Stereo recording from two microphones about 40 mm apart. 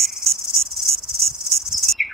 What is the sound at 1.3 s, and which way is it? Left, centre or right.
Cricket, centre.